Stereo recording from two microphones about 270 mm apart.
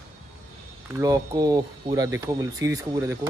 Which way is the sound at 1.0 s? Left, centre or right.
Centre.